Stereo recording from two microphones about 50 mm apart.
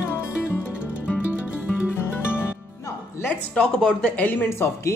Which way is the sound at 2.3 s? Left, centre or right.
Left.